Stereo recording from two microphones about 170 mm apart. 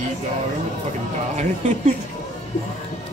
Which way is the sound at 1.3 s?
45° right (ahead or behind).